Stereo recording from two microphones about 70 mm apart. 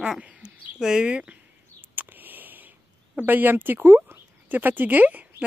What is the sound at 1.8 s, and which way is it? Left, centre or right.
Speech, right.